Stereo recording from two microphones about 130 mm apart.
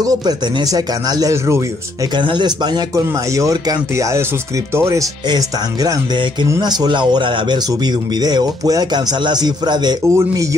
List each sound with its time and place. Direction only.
0.0 s speech: 30° right (ahead or behind)
2.1 s speech: 35° right (ahead or behind); by 5.0 s 20° right (ahead or behind)
5.3 s speech: 30° right (ahead or behind)